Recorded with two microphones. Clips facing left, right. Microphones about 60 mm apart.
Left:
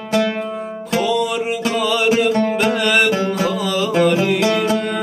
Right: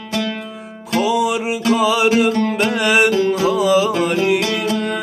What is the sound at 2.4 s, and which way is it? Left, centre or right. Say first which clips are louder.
Music: left 1 dB; centre.